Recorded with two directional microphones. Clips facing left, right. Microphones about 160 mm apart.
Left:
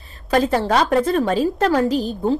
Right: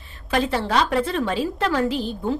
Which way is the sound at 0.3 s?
45° left (ahead or behind).